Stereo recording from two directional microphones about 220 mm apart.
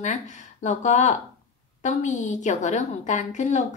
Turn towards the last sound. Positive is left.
turn(degrees=35)  # may be behind; listen again after turning